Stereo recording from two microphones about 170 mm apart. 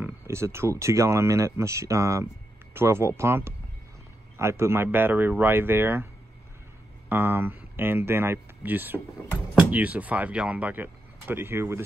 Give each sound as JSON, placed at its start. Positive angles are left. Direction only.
{"t": 0.0, "sound": "speech", "side_deg": -15}
{"t": 7.1, "sound": "speech", "side_deg": -10}